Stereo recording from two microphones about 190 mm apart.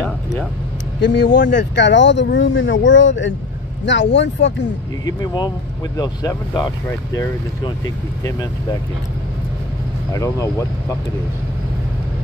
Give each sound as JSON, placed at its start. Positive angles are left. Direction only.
{"t": 1.0, "sound": "speech", "side_deg": 65}
{"t": 5.0, "sound": "speech", "side_deg": 20}
{"t": 10.1, "sound": "speech", "side_deg": 15}